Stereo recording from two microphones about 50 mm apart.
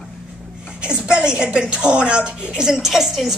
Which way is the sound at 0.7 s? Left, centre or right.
Centre.